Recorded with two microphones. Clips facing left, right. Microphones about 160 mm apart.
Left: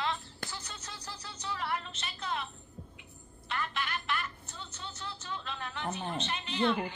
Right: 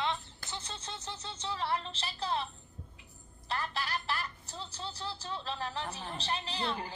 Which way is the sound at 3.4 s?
35° right (ahead or behind).